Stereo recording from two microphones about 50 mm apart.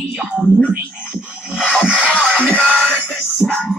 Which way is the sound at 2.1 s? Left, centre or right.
Centre.